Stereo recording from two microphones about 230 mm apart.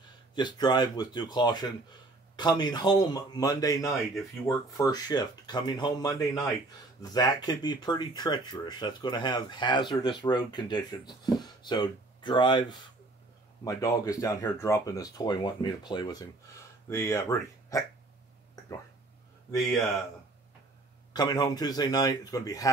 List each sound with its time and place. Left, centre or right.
0.3 s speech: centre
19.5 s a man's voice: centre
21.1 s speech: centre